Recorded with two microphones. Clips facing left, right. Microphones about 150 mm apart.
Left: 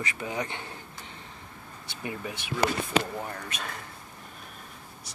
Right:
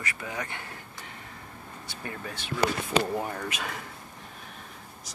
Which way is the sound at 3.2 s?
10° right (ahead or behind).